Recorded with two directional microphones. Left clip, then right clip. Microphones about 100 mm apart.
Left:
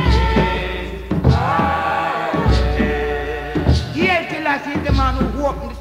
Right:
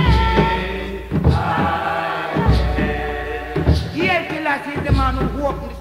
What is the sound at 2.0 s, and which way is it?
Music, 35° left (ahead or behind).